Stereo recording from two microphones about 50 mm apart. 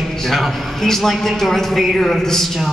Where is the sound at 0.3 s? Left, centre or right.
Centre.